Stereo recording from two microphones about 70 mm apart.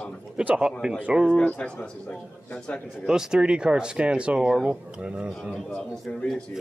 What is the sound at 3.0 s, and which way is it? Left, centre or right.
Speech, centre.